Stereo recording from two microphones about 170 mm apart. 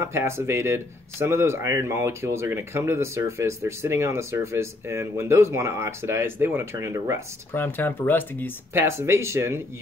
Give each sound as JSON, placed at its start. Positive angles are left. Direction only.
{"t": 0.0, "sound": "speech", "side_deg": -15}
{"t": 7.5, "sound": "speech", "side_deg": 10}
{"t": 8.7, "sound": "speech", "side_deg": -15}